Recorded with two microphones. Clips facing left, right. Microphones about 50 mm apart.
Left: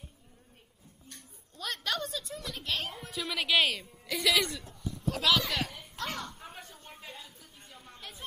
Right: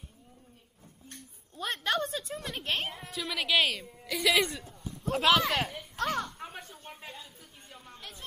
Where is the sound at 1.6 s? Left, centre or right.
Right.